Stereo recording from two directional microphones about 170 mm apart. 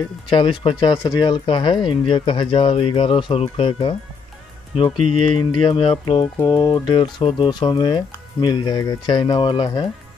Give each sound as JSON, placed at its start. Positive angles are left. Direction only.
{"t": 0.3, "sound": "speech", "side_deg": 30}